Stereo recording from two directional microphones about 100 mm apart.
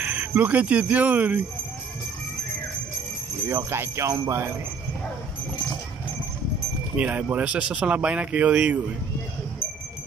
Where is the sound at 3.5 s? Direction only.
25° right (ahead or behind).